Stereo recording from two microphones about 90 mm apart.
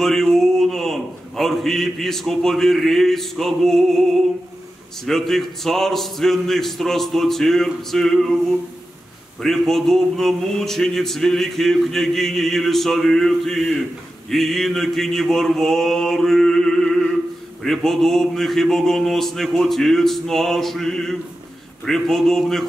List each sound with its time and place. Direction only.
0.0 s speech: 5° left (ahead or behind)